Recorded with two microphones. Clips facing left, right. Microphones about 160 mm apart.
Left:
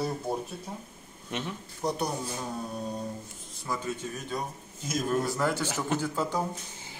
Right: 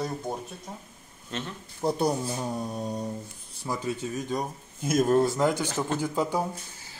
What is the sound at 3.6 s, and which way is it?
Speech, 15° right (ahead or behind).